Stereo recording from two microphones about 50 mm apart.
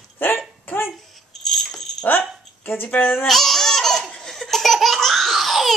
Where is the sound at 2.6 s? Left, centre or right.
Left.